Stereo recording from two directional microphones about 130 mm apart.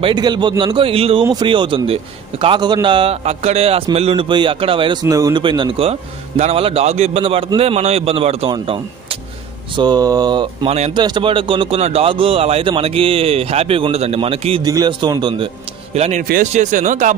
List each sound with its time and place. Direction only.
0.0 s a man's voice: 35° right (ahead or behind)
5.0 s speech: 25° right (ahead or behind)
5.4 s a man's voice: 40° right (ahead or behind)
9.8 s a man's voice: 30° right (ahead or behind); by 14.6 s 50° right (ahead or behind)
14.6 s a man's voice: 30° right (ahead or behind)
15.9 s a man's voice: 60° right (ahead or behind)